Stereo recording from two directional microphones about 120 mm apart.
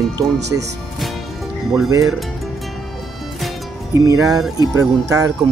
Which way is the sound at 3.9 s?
25° right (ahead or behind).